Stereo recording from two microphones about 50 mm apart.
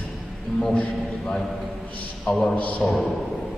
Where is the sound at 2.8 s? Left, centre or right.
Centre.